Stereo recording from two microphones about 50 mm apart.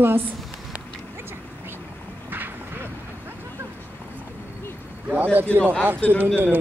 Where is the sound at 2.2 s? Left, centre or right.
Right.